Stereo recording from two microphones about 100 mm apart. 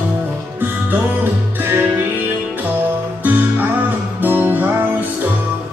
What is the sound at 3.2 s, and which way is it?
Music, 20° right (ahead or behind).